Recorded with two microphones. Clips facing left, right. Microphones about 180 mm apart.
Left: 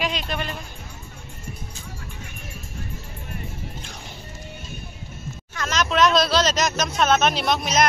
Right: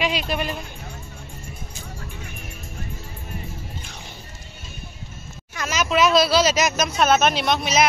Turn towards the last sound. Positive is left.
turn(degrees=0)  # may be behind; listen again after turning